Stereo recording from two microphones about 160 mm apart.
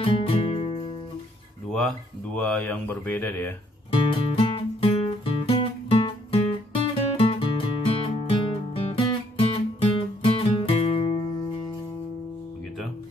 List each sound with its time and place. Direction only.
0.0 s music: 35° left (ahead or behind)
2.3 s speech: 5° left (ahead or behind)
3.9 s music: 35° left (ahead or behind)